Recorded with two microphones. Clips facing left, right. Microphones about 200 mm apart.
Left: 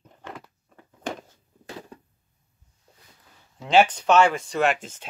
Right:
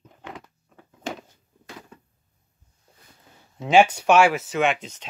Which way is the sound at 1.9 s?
35° left (ahead or behind).